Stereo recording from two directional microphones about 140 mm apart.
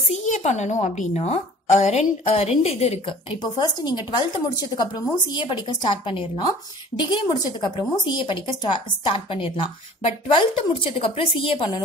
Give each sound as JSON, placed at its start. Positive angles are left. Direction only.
{"t": 0.1, "sound": "a woman's voice", "side_deg": 60}
{"t": 7.6, "sound": "speech", "side_deg": 35}